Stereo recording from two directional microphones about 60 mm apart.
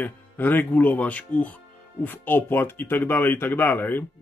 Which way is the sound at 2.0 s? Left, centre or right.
Left.